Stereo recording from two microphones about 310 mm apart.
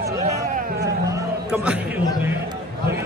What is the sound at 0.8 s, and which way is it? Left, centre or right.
Chatter, centre.